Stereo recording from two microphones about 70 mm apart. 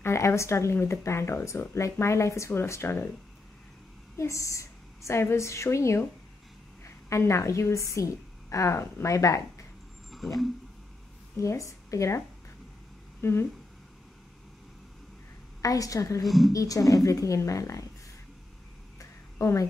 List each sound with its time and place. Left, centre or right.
0.0 s speech: left
4.2 s a woman's voice: left
11.3 s a woman's voice: left
13.2 s speech: left
15.6 s speech: left
16.3 s speech: centre
16.5 s speech: left
18.9 s a sound: left